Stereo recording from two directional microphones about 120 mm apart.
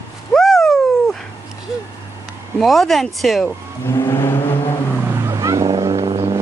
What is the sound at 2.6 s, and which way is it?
Speech, centre (ahead or behind).